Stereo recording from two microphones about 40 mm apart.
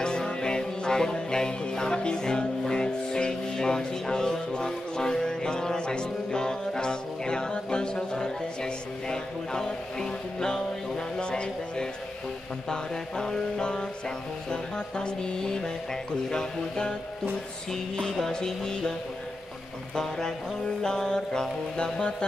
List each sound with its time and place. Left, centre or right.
0.0 s music: left
11.1 s mantra: left
12.6 s music: centre
18.3 s mantra: centre
20.0 s music: centre
20.8 s mantra: centre